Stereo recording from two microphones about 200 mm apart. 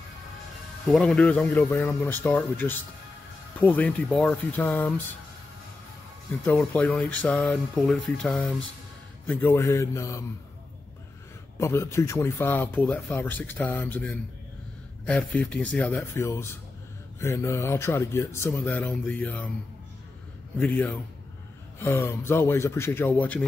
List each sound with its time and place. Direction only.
0.9 s speech: 5° left (ahead or behind)
6.4 s speech: 10° left (ahead or behind)
11.5 s speech: 15° left (ahead or behind)
20.5 s speech: 10° left (ahead or behind)